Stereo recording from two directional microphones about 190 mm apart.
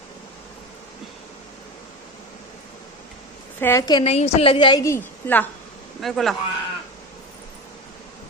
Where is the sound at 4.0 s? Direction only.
35° left (ahead or behind); by 5.5 s 10° left (ahead or behind).